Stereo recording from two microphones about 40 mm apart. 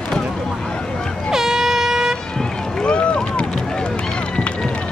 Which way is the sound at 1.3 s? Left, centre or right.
Centre.